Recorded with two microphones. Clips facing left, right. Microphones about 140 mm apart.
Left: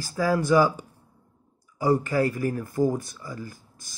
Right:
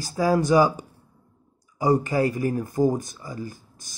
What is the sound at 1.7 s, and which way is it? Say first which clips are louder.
Speech: right 1 dB; 20° right (ahead or behind).